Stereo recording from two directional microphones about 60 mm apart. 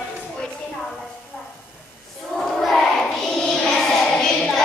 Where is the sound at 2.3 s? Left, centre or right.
Centre.